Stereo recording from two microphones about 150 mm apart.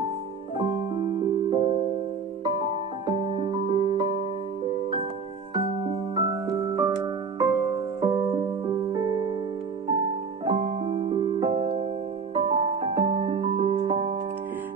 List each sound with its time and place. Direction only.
1.5 s music: 35° right (ahead or behind)
3.1 s music: 30° right (ahead or behind)
6.1 s music: 25° right (ahead or behind)
10.4 s music: 45° right (ahead or behind)